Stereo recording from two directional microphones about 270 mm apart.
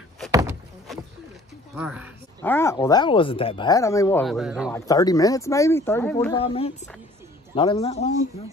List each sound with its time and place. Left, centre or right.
0.3 s a sound: centre
1.8 s speech: centre
2.4 s speech: centre
4.7 s speech: centre
6.3 s speech: left